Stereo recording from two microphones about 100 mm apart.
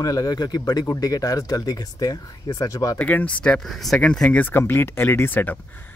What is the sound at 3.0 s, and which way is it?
Speech, 15° left (ahead or behind).